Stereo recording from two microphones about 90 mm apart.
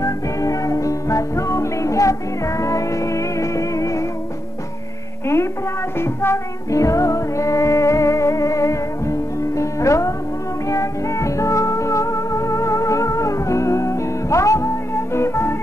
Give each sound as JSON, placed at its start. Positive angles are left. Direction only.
{"t": 0.0, "sound": "music", "side_deg": 40}
{"t": 5.2, "sound": "a sound", "side_deg": 30}
{"t": 5.9, "sound": "music", "side_deg": 30}